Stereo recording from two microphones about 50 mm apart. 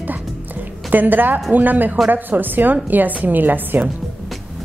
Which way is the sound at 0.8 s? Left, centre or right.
Right.